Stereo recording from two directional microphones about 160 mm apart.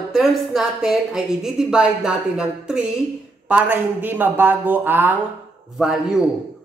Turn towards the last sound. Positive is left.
turn(degrees=-5)  # may be behind; listen again after turning